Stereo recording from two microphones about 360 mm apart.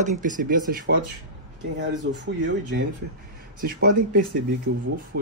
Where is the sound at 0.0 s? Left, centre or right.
Right.